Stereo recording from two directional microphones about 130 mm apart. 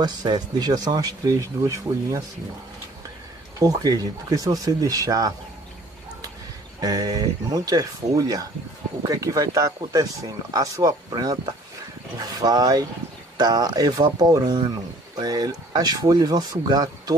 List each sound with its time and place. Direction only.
0.0 s speech: 30° right (ahead or behind)
3.5 s speech: 30° right (ahead or behind)
6.8 s speech: 30° right (ahead or behind)